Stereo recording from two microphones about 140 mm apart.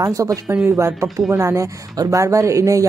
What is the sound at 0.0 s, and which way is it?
Speech, 25° right (ahead or behind).